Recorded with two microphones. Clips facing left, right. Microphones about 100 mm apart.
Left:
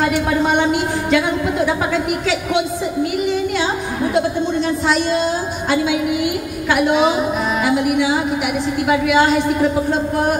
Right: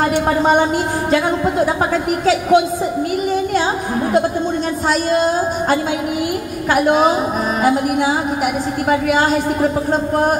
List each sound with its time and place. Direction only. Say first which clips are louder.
0.0 s a woman's voice: right 2 dB; 40° right (ahead or behind)
4.8 s a woman's voice: right 4 dB; 45° right (ahead or behind)